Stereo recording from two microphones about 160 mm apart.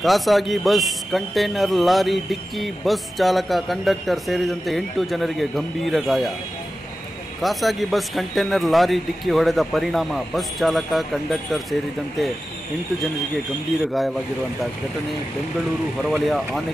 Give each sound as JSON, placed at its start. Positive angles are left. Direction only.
{"t": 0.0, "sound": "a man's voice", "side_deg": 0}
{"t": 7.4, "sound": "a man's voice", "side_deg": 0}
{"t": 16.0, "sound": "a man's voice", "side_deg": 0}